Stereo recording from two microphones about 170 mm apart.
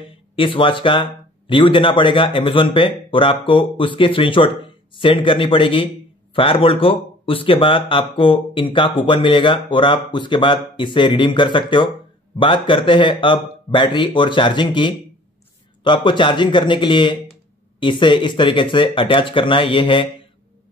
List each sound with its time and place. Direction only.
0.4 s speech: 30° left (ahead or behind)